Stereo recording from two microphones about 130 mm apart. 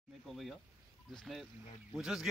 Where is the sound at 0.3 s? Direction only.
Centre (ahead or behind).